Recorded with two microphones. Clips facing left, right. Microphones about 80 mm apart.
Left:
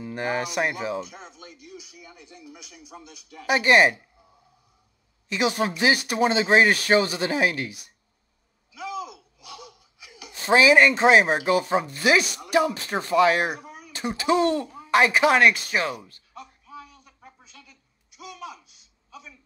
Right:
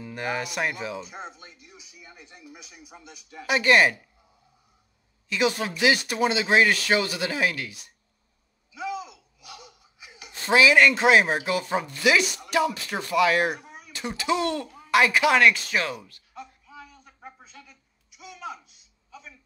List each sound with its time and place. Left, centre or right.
0.1 s speech: left
1.1 s a sound: right
3.4 s speech: left
5.3 s speech: left
9.1 s a sound: right
10.4 s speech: left